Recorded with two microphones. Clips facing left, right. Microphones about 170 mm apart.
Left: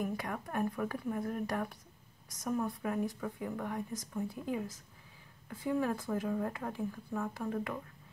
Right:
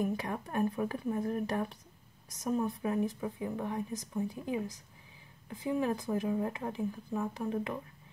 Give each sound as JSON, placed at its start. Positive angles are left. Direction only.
{"t": 0.0, "sound": "speech", "side_deg": -25}